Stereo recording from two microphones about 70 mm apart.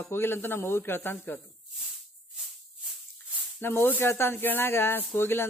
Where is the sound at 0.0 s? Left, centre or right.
Left.